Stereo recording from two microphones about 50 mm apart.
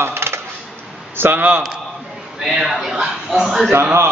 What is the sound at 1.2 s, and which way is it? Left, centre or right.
Speech, right.